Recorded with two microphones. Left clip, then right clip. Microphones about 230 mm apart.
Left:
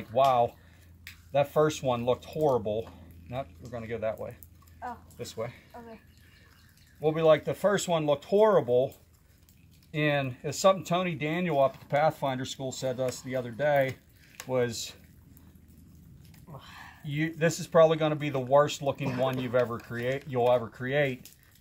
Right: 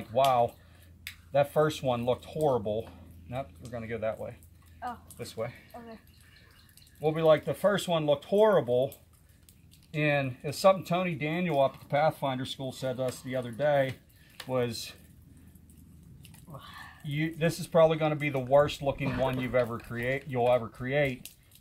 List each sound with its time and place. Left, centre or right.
0.1 s speech: centre
7.0 s speech: centre
16.5 s a sound: centre
17.0 s speech: centre